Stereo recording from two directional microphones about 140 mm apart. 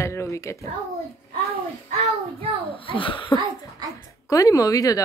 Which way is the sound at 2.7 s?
40° left (ahead or behind).